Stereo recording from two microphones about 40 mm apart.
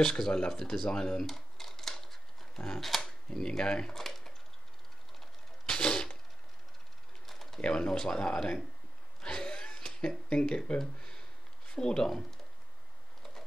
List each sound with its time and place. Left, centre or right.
0.0 s speech: centre
0.9 s a sound: centre
2.8 s speech: centre
3.3 s speech: centre
3.9 s a sound: centre
5.7 s typewriter: centre
7.2 s pigeon: centre
7.6 s speech: left
9.2 s a sound: centre
12.1 s speech: centre